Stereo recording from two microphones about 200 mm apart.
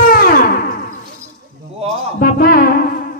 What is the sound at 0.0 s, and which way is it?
Music, 45° left (ahead or behind).